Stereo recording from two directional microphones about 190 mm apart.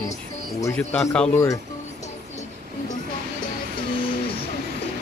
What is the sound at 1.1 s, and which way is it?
Speech, 5° left (ahead or behind).